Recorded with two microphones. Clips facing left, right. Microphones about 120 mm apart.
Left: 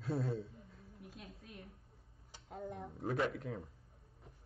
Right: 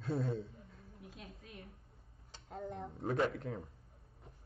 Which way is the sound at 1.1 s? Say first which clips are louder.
Right 1 dB; 55° right (ahead or behind).